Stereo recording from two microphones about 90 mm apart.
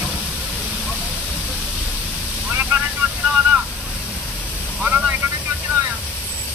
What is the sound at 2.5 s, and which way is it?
Vehicle, 20° right (ahead or behind).